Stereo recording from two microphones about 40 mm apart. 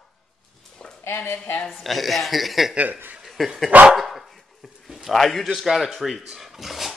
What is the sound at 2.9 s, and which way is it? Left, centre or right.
Speech, right.